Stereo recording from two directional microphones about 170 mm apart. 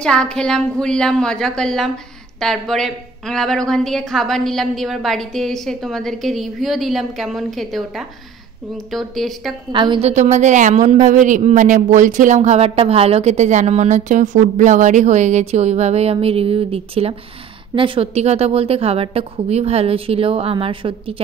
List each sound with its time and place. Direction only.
0.0 s a woman's voice: 5° left (ahead or behind)
9.7 s a woman's voice: 25° right (ahead or behind)